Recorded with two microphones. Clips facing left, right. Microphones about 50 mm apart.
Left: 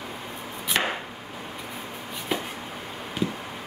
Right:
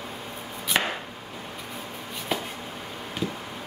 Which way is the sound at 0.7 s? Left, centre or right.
Centre.